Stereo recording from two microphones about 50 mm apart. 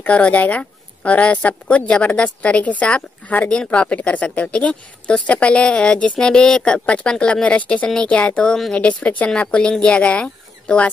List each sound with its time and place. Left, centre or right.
0.0 s a woman's voice: left